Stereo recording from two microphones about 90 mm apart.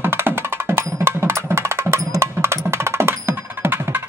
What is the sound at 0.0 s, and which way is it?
Music, 25° right (ahead or behind).